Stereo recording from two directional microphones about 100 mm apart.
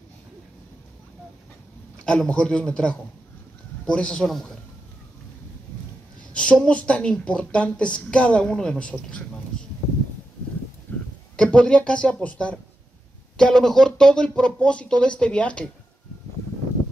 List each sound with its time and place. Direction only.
2.0 s speech: 10° left (ahead or behind)
6.3 s speech: 10° left (ahead or behind)
10.9 s a sound: 15° left (ahead or behind)
11.3 s speech: 10° left (ahead or behind)